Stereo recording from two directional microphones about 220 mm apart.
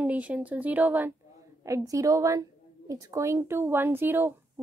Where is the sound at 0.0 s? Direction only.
5° right (ahead or behind).